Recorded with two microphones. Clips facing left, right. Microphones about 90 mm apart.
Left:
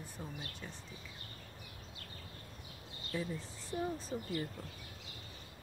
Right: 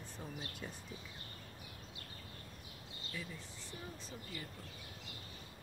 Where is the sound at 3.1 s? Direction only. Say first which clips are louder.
Left 8 dB; 30° left (ahead or behind).